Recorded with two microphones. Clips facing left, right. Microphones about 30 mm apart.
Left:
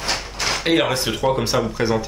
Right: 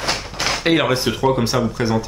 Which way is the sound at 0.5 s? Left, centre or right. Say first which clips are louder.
Right 2 dB; centre.